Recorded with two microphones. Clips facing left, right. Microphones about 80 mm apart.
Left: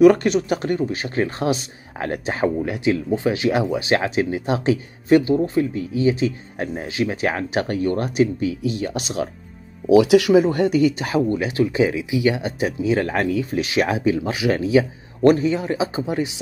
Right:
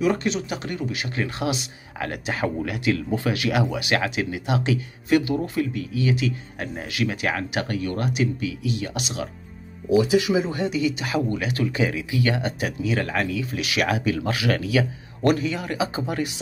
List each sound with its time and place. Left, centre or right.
0.0 s speech: left
2.4 s speech: left
9.8 s speech: left
11.3 s speech: left